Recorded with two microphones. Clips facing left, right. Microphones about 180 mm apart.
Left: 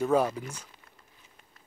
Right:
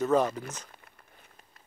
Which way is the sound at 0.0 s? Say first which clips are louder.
Even; 10° left (ahead or behind).